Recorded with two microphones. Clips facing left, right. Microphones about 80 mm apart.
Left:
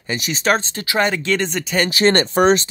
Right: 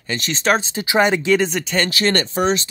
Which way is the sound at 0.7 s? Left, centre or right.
Centre.